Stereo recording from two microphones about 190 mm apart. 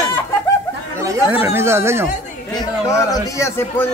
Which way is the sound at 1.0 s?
15° right (ahead or behind).